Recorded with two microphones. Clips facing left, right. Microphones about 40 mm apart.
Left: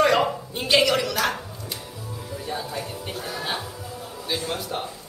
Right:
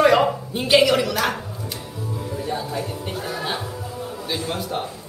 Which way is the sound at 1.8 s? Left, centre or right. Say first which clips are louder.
Right 6 dB; centre.